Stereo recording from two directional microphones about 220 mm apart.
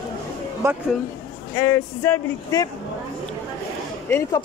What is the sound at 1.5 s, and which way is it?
Speech, 10° left (ahead or behind).